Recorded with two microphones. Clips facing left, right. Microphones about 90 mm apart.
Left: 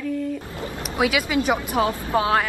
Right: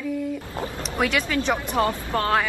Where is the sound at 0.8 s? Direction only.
5° left (ahead or behind).